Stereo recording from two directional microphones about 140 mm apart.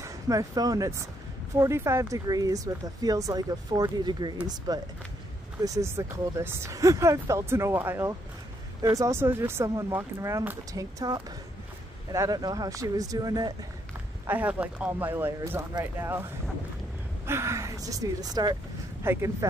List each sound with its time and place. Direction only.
0.0 s speech: 25° right (ahead or behind)
14.2 s speech: 10° right (ahead or behind)
17.3 s speech: 20° right (ahead or behind)
19.1 s speech: 15° right (ahead or behind)